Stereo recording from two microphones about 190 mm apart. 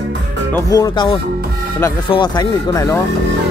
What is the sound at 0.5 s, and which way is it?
Speech, 15° left (ahead or behind).